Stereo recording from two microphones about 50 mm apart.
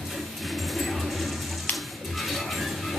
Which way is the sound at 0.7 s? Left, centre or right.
Centre.